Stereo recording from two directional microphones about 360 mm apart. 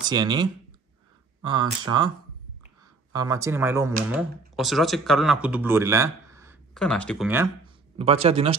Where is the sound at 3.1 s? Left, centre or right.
Centre.